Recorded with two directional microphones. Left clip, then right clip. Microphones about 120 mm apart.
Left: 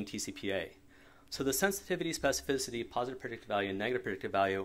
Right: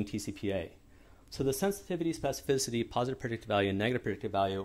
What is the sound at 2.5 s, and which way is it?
Speech, 30° right (ahead or behind).